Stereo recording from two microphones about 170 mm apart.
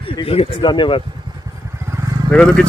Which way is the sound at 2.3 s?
5° left (ahead or behind).